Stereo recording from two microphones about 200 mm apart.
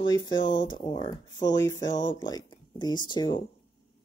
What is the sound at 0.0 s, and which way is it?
Speech, 20° left (ahead or behind).